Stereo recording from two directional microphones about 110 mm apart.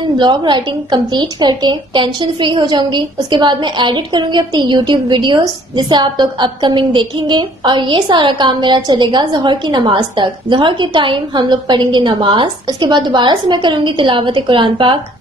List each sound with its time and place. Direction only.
0.2 s a woman's voice: 45° right (ahead or behind)